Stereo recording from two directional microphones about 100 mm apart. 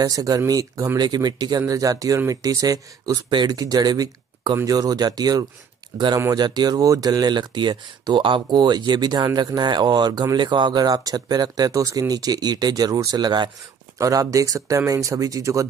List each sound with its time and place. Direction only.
0.0 s speech: 35° right (ahead or behind)
13.9 s speech: 30° right (ahead or behind)